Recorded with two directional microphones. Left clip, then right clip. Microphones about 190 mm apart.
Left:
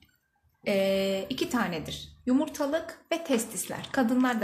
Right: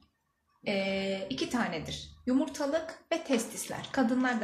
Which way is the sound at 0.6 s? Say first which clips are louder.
Left 6 dB; 50° left (ahead or behind).